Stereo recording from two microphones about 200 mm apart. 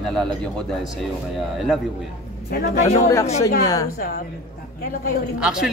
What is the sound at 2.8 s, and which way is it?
Speech, 35° left (ahead or behind).